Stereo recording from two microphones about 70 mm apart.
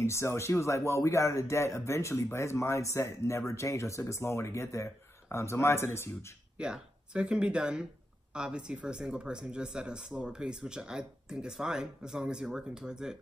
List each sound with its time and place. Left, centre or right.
0.0 s speech: left
6.6 s speech: centre